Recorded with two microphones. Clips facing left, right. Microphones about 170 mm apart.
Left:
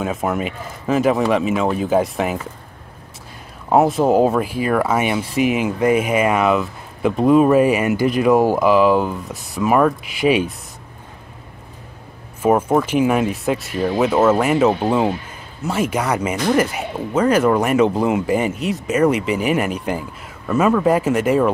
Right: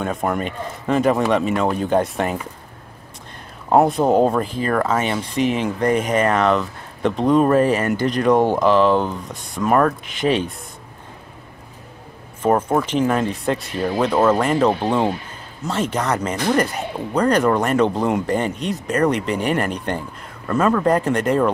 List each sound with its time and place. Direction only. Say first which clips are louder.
0.0 s speech: left 1 dB; 5° left (ahead or behind)
3.6 s speech: left 1 dB; centre (ahead or behind)
12.4 s speech: left 2 dB; 10° left (ahead or behind)